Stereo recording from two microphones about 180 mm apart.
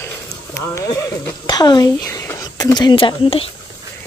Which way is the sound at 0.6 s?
15° left (ahead or behind).